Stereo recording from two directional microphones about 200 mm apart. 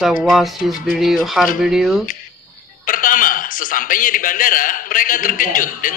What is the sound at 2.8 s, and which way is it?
A man's voice, 45° left (ahead or behind).